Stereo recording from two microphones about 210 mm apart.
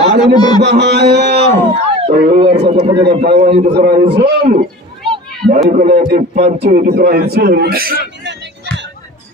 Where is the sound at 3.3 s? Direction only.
30° right (ahead or behind); by 4.6 s 45° right (ahead or behind).